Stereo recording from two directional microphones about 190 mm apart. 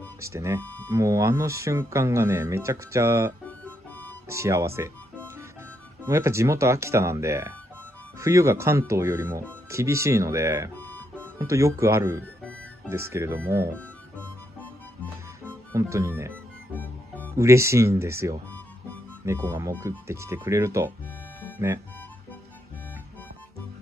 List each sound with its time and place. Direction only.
0.2 s speech: 15° right (ahead or behind)
0.6 s a sound: 10° left (ahead or behind)
0.8 s speech: 15° right (ahead or behind)
10.8 s music: 10° left (ahead or behind)
11.1 s speech: 15° right (ahead or behind)
15.4 s speech: 15° right (ahead or behind)
17.4 s speech: 15° right (ahead or behind)